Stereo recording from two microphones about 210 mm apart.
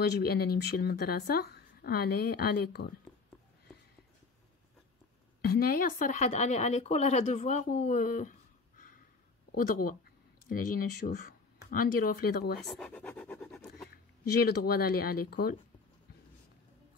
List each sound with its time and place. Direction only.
0.0 s speech: 50° left (ahead or behind)
5.4 s speech: 45° left (ahead or behind)
12.5 s scratch: 5° left (ahead or behind)
14.4 s speech: 45° left (ahead or behind)